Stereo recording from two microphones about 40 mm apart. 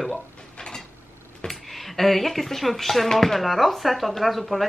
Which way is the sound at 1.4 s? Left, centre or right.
Centre.